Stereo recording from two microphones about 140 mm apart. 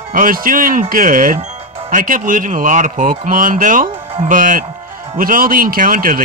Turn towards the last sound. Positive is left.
turn(degrees=-75)  # may be behind; listen again after turning